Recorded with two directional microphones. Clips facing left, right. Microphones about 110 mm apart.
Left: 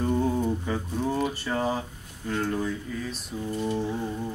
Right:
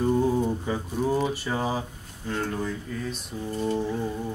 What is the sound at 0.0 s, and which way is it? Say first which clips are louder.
Speech: right 2 dB; 10° right (ahead or behind).